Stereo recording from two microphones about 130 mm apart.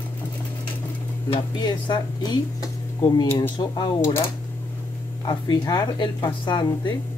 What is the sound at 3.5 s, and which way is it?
Speech, 30° left (ahead or behind).